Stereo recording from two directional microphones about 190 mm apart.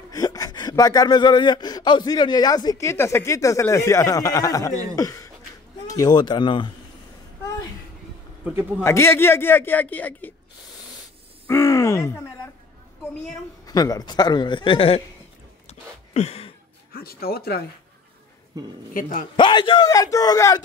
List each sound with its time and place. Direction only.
0.1 s speech: 20° left (ahead or behind)
8.5 s a man's voice: 5° right (ahead or behind)
8.8 s a man's voice: 15° left (ahead or behind)
11.4 s speech: 15° left (ahead or behind)
13.7 s speech: 20° left (ahead or behind)
15.6 s a sound: 35° left (ahead or behind)
16.9 s speech: 50° left (ahead or behind)
18.6 s speech: 20° right (ahead or behind)
18.9 s speech: 45° left (ahead or behind)
19.3 s speech: 25° left (ahead or behind)